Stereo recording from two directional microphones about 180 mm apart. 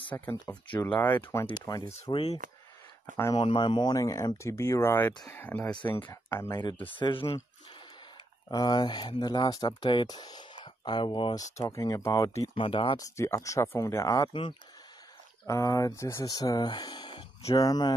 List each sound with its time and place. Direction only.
0.1 s speech: 10° left (ahead or behind)
6.6 s speech: 25° left (ahead or behind)
8.5 s speech: 20° left (ahead or behind)